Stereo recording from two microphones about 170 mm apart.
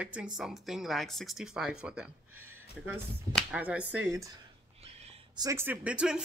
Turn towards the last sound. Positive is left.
turn(degrees=-5)  # may be behind; listen again after turning